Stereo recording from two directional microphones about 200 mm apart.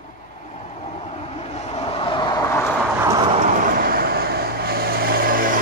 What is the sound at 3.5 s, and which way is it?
Vehicle, 45° right (ahead or behind).